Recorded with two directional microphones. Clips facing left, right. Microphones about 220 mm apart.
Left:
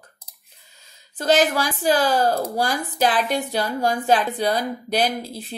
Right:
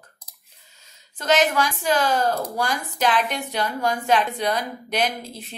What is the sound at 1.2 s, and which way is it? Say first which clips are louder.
Speech: left 2 dB; 35° left (ahead or behind).